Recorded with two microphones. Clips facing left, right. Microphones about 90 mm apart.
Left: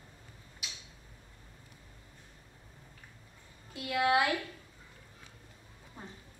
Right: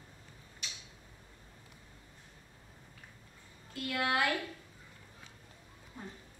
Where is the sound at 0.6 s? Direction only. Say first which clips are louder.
Even; 5° left (ahead or behind).